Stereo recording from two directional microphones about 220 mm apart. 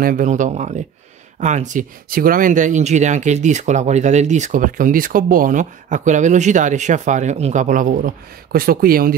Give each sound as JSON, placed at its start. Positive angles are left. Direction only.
{"t": 0.0, "sound": "speech", "side_deg": -35}